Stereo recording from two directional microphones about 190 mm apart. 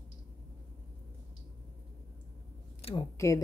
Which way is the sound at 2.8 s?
30° left (ahead or behind).